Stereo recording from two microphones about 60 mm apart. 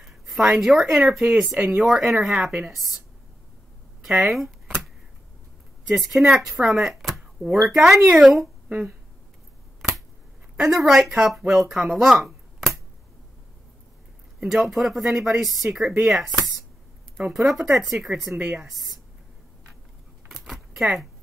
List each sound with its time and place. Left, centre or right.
0.0 s speech: centre
4.2 s speech: centre
5.9 s speech: centre
9.8 s finger snapping: centre
10.6 s speech: centre
11.0 s speech: centre
11.2 s speech: centre
14.4 s speech: centre
18.4 s speech: centre
18.7 s speech: centre
20.2 s keys jangling: centre